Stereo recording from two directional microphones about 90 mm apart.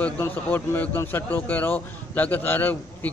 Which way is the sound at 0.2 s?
25° left (ahead or behind).